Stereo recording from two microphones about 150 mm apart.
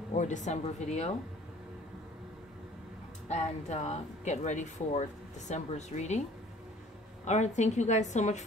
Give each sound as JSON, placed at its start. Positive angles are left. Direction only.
{"t": 0.1, "sound": "speech", "side_deg": 55}
{"t": 3.3, "sound": "speech", "side_deg": 50}
{"t": 7.2, "sound": "speech", "side_deg": 50}